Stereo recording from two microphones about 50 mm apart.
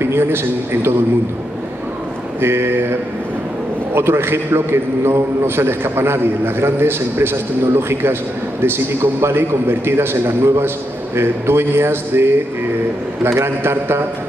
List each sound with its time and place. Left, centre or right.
0.0 s a man's voice: right
2.4 s a man's voice: right
3.9 s a man's voice: right